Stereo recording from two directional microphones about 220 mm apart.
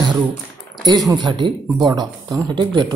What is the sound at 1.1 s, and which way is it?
Speech, 20° right (ahead or behind).